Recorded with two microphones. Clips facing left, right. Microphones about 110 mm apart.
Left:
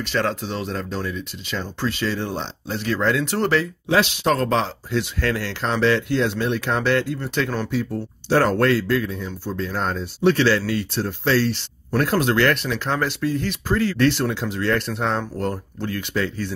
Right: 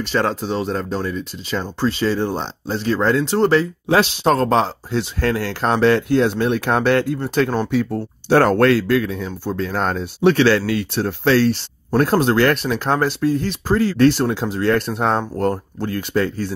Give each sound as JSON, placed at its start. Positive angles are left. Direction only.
{"t": 0.0, "sound": "speech", "side_deg": -40}
{"t": 7.7, "sound": "speech", "side_deg": -60}
{"t": 11.5, "sound": "speech", "side_deg": -40}